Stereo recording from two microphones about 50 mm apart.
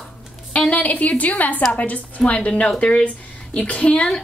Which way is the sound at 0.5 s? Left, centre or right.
Left.